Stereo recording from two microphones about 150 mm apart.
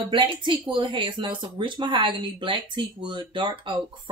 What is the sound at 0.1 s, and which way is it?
Speech, 35° right (ahead or behind).